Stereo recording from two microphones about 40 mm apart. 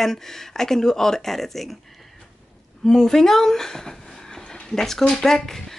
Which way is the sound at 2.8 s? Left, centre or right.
Centre.